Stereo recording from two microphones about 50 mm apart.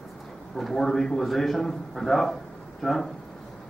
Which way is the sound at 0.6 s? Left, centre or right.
Centre.